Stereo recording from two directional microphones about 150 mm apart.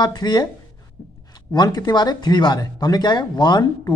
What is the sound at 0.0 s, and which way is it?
Speech, 30° left (ahead or behind).